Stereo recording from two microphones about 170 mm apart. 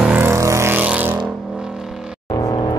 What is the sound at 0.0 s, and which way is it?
Vehicle, 10° right (ahead or behind).